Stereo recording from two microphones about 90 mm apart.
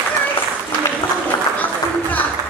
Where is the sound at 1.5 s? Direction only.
20° left (ahead or behind).